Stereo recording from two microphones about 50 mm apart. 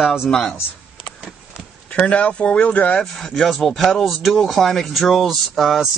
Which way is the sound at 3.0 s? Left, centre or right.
Centre.